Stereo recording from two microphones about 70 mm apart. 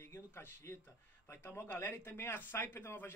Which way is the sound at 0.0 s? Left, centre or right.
Left.